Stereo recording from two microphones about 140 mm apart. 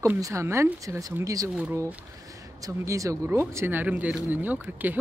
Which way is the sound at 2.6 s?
20° right (ahead or behind).